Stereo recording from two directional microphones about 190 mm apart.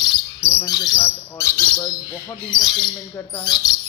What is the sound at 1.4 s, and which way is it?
Speech, 15° left (ahead or behind).